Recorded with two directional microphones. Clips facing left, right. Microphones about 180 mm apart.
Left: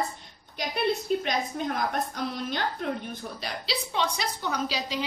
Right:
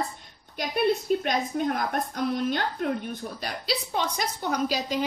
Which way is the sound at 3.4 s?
50° right (ahead or behind).